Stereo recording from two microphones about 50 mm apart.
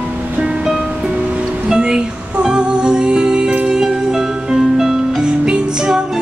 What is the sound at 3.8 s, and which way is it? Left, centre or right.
Music, centre.